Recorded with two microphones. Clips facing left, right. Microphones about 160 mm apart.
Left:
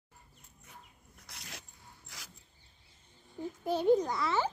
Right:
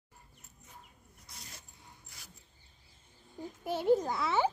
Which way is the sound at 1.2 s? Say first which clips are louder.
Left 3 dB; 75° left (ahead or behind).